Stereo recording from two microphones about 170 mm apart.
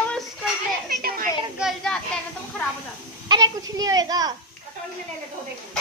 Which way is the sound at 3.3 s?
25° right (ahead or behind).